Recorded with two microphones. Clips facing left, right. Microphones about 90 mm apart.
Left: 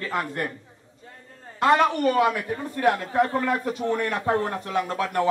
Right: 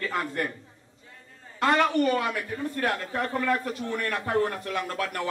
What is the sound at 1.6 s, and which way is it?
A man's voice, 15° left (ahead or behind).